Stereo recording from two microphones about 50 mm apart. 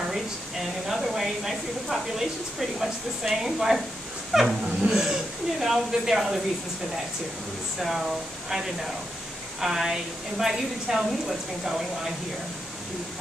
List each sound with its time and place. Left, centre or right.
0.1 s a woman's voice: centre
8.5 s a woman's voice: centre